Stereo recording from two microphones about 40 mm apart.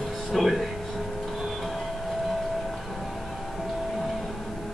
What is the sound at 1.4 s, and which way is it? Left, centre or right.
Music, centre.